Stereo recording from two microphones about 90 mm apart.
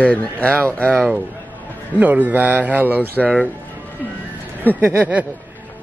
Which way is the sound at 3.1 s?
10° left (ahead or behind).